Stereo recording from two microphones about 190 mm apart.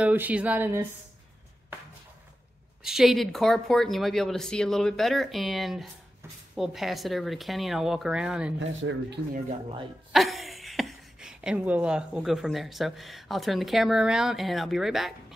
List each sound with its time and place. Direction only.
0.0 s speech: 10° right (ahead or behind)
2.8 s speech: centre (ahead or behind)
8.5 s speech: 80° right
10.1 s speech: centre (ahead or behind)